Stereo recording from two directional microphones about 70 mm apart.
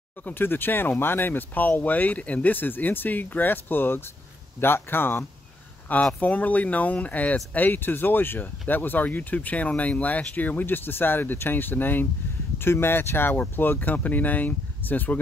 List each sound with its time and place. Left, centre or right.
0.2 s speech: left